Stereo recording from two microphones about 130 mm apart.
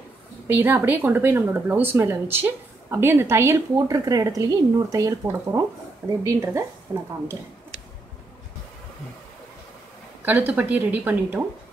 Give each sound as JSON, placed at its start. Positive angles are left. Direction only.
{"t": 0.5, "sound": "speech", "side_deg": -15}
{"t": 10.2, "sound": "speech", "side_deg": -15}